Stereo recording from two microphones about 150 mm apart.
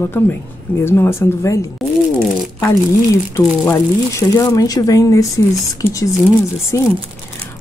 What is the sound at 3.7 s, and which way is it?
Speech, 20° left (ahead or behind).